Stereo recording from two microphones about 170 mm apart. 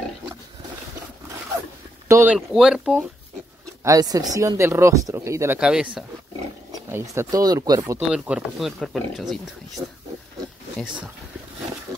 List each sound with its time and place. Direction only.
2.0 s speech: 15° right (ahead or behind)
2.3 s speech: 5° right (ahead or behind)
3.8 s speech: 20° right (ahead or behind)
5.6 s speech: 5° right (ahead or behind)
6.9 s speech: 20° right (ahead or behind)
8.1 s speech: 5° right (ahead or behind)
9.8 s speech: 15° right (ahead or behind)